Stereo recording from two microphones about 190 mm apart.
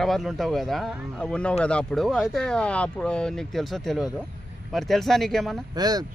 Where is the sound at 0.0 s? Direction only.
Centre (ahead or behind).